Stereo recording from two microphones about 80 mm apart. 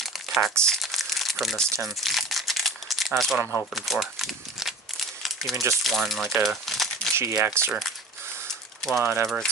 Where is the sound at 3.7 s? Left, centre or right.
Centre.